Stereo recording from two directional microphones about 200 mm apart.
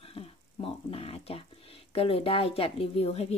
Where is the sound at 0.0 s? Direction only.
30° left (ahead or behind).